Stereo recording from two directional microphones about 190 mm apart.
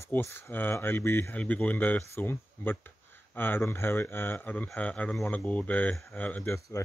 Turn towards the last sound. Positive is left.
turn(degrees=15)  # may be behind; listen again after turning